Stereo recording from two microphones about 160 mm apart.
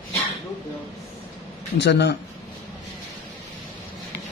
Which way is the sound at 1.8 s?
90° left.